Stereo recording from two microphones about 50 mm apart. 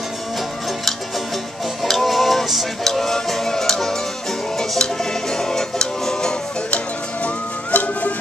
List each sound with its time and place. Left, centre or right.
1.8 s music: centre
7.2 s music: left